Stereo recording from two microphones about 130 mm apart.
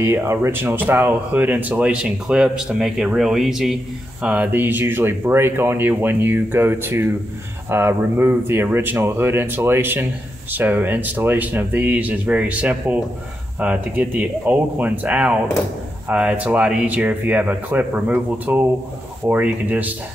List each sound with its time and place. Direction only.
0.0 s speech: 20° right (ahead or behind)